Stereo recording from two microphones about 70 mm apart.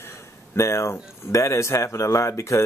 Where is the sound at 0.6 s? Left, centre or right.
Left.